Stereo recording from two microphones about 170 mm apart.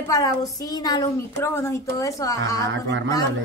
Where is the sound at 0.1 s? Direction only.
20° left (ahead or behind).